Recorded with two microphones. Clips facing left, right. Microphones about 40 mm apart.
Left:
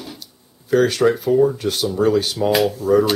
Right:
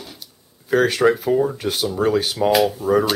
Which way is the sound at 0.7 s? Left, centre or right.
Centre.